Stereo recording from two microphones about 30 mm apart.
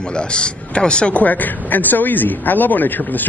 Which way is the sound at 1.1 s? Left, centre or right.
Left.